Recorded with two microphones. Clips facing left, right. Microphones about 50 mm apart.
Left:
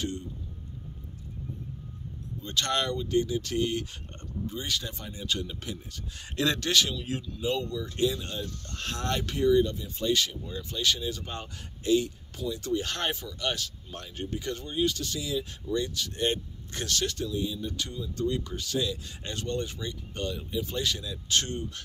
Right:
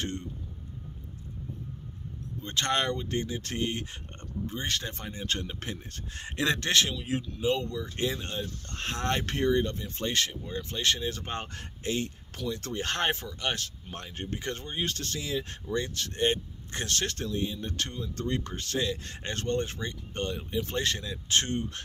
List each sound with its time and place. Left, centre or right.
2.4 s speech: right
6.2 s speech: right